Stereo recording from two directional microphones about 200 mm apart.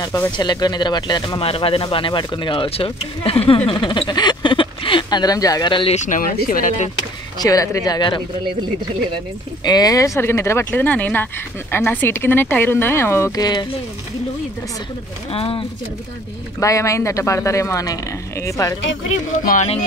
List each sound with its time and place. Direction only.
0.0 s speech: 20° left (ahead or behind)
5.9 s speech: 40° left (ahead or behind)
7.3 s speech: 15° left (ahead or behind)
9.7 s speech: 20° left (ahead or behind)
15.3 s speech: 30° left (ahead or behind)
16.5 s speech: 15° left (ahead or behind)
19.4 s speech: 35° left (ahead or behind)